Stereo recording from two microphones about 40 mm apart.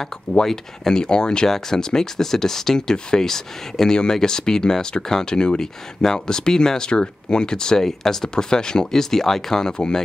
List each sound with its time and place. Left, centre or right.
0.5 s speech: centre